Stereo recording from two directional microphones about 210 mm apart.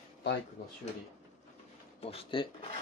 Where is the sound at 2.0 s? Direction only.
25° left (ahead or behind).